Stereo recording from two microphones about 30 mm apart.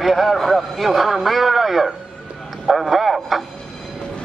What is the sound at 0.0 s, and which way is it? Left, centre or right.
A man's voice, centre.